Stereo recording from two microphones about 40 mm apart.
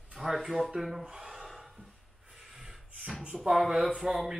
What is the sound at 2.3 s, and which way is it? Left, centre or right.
Beatboxing, centre.